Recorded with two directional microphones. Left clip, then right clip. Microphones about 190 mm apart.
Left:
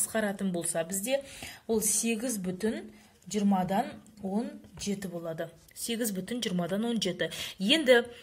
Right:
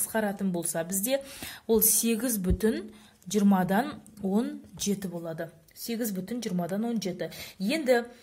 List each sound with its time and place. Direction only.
0.1 s a woman's voice: 10° right (ahead or behind); by 4.9 s 30° right (ahead or behind)
5.1 s speech: 10° right (ahead or behind); by 8.0 s 10° left (ahead or behind)